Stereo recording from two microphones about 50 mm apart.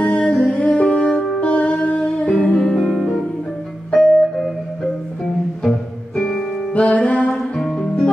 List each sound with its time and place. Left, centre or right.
0.0 s music: left
2.5 s music: centre
5.6 s music: centre
6.7 s music: left
7.5 s music: centre